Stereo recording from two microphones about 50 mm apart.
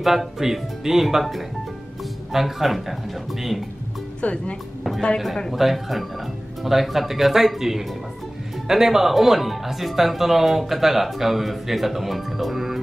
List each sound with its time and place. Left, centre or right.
0.0 s speech: centre
4.2 s speech: left
5.5 s speech: centre